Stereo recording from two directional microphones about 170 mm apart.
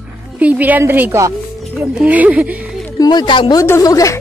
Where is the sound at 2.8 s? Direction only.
20° left (ahead or behind).